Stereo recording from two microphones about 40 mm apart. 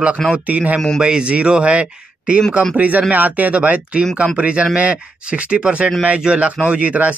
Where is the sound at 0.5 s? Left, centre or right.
Right.